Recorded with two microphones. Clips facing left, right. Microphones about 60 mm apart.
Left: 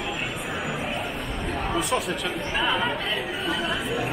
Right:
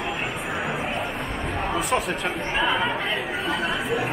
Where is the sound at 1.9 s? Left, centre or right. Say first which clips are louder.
Right 2 dB; right.